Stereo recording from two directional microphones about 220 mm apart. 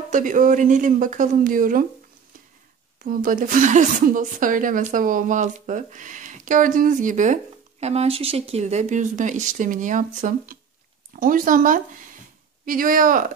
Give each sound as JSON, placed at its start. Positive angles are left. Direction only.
{"t": 0.1, "sound": "a woman's voice", "side_deg": -35}
{"t": 3.0, "sound": "a woman's voice", "side_deg": -40}